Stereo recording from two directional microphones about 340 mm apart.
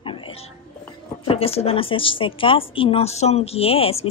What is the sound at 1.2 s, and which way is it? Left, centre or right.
A woman's voice, centre.